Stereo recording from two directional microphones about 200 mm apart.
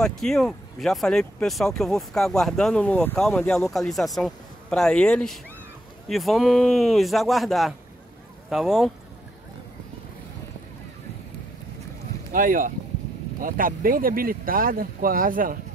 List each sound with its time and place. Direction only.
0.0 s speech: centre (ahead or behind)
12.3 s speech: 45° right (ahead or behind)